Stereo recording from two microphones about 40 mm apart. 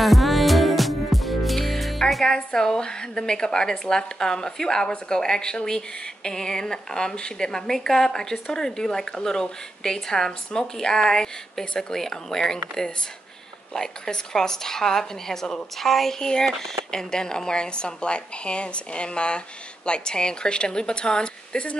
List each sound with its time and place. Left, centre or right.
0.0 s music: centre
2.2 s a woman's voice: centre
16.2 s a woman's voice: centre
16.4 s speech: centre
16.9 s a woman's voice: centre